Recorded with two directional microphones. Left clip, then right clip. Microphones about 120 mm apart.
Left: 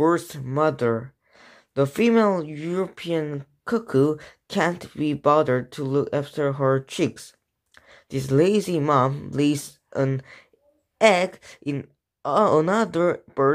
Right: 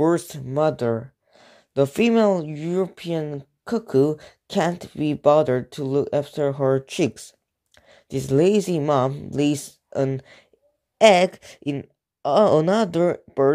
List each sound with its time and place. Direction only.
0.0 s speech: 40° right (ahead or behind)
11.0 s speech: 60° right (ahead or behind); by 13.5 s 40° right (ahead or behind)